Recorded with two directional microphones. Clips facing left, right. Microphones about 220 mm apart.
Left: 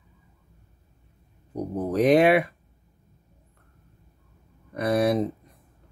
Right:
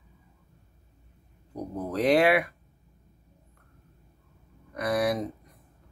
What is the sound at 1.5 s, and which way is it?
Speech, 20° left (ahead or behind).